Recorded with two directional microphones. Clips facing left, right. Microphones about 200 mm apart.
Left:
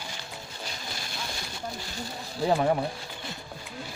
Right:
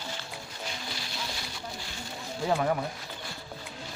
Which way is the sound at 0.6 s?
50° left (ahead or behind).